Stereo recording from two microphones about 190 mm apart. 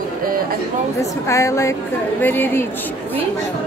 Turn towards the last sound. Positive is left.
turn(degrees=10)  # may be behind; listen again after turning